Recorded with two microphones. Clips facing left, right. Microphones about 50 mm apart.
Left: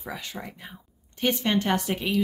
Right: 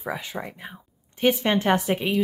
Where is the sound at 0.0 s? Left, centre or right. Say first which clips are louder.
Right 5 dB; centre.